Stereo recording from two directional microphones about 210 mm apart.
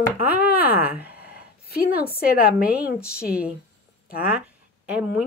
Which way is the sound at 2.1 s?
45° left (ahead or behind).